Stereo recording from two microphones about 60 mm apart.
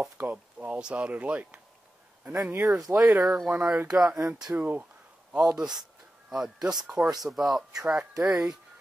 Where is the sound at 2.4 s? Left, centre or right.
Right.